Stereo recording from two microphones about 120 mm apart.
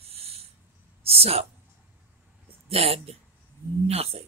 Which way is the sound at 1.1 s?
55° right (ahead or behind).